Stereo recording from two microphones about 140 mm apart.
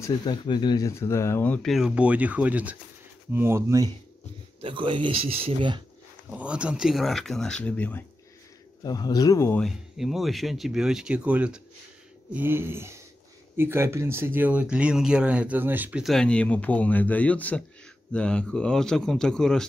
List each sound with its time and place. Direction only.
0.2 s speech: 35° left (ahead or behind); by 1.7 s 10° left (ahead or behind)
1.7 s speech: 5° right (ahead or behind); by 3.9 s 20° right (ahead or behind)
4.6 s speech: 40° right (ahead or behind)
6.3 s speech: 10° right (ahead or behind); by 8.0 s 10° left (ahead or behind)
8.8 s speech: 25° left (ahead or behind)
9.6 s speech: centre (ahead or behind)
16.0 s a man's voice: centre (ahead or behind)